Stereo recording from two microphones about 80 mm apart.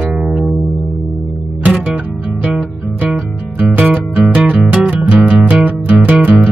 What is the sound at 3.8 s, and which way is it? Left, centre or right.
Music, centre.